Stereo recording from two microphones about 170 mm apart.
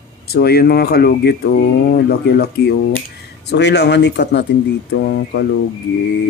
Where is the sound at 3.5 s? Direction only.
90° left.